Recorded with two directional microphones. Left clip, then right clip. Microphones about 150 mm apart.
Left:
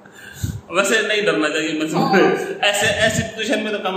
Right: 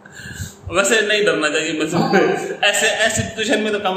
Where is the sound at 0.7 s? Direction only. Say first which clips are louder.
Right 2 dB; 20° right (ahead or behind).